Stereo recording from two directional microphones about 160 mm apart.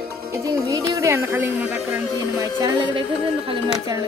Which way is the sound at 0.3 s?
20° right (ahead or behind).